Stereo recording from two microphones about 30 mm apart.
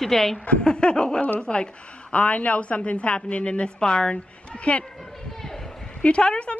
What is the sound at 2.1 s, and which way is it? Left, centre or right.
A woman's voice, left.